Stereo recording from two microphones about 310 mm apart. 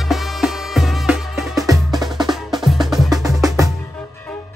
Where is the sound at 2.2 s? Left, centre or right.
Centre.